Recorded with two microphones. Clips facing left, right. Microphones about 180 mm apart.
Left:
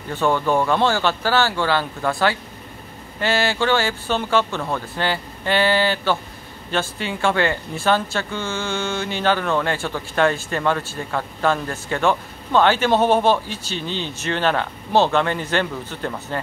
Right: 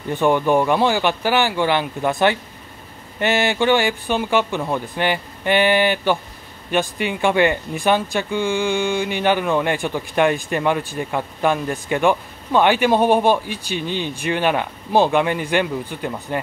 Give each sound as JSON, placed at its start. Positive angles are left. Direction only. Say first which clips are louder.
{"t": 0.1, "sound": "speech", "louder": "right 3 dB", "side_deg": -15}